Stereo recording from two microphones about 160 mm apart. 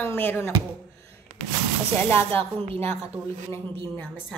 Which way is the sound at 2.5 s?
35° right (ahead or behind).